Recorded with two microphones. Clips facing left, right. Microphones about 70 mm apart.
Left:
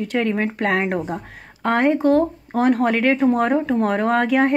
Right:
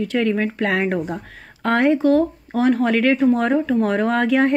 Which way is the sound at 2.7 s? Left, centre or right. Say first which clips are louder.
Right 1 dB; left.